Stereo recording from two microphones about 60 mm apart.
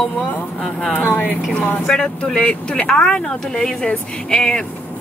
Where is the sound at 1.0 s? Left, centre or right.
Left.